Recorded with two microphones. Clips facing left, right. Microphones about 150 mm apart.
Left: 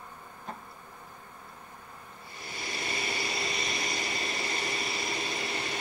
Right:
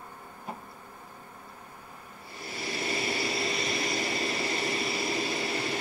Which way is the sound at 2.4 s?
30° right (ahead or behind).